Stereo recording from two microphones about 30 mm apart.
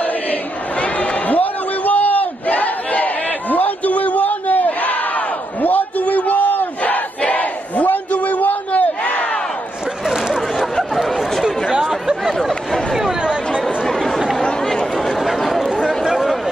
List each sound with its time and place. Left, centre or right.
0.0 s a sound: left
7.2 s battle cry: left
9.0 s crowd: left
10.3 s chatter: centre
11.8 s chatter: centre
13.9 s chatter: centre
14.4 s chatter: left
15.0 s chatter: centre